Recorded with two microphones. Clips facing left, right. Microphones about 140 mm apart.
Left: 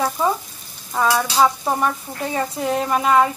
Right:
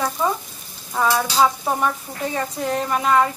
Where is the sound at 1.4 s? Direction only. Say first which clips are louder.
Left 1 dB; centre (ahead or behind).